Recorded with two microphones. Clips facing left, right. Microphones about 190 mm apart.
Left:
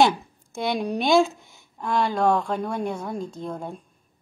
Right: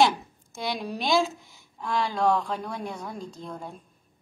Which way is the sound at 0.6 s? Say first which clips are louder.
Left 6 dB; 50° left (ahead or behind).